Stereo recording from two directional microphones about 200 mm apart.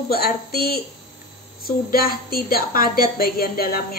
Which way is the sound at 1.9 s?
45° left (ahead or behind).